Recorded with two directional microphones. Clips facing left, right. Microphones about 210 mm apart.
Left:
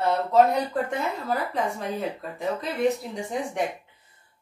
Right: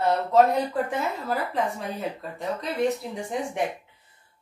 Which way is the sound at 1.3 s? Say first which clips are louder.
Even; centre (ahead or behind).